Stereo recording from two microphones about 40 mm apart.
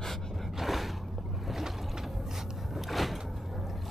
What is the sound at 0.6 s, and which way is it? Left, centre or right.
Gasp, centre.